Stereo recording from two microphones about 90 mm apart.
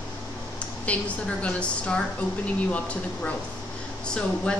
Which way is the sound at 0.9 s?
15° left (ahead or behind).